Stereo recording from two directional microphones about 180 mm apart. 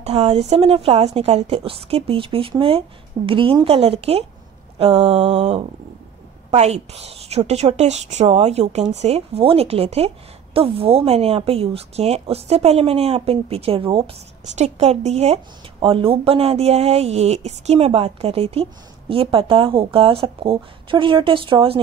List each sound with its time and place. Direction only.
0.0 s a woman's voice: 35° right (ahead or behind)